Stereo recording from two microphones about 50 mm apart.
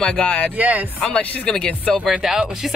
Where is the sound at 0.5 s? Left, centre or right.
Right.